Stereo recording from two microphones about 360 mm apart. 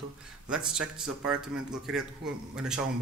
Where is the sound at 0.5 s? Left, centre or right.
Centre.